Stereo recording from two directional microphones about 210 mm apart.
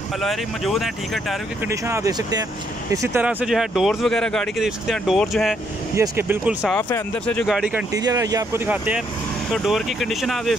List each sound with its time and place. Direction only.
0.2 s speech: centre (ahead or behind)
1.7 s speech: 15° right (ahead or behind)
6.7 s speech: 10° left (ahead or behind)
7.9 s speech: 15° right (ahead or behind); by 10.5 s centre (ahead or behind)